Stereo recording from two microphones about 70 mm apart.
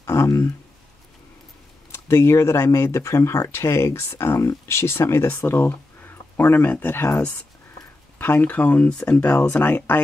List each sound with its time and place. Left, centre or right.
0.0 s a sound: left
1.9 s speech: left; by 9.2 s centre
9.2 s speech: left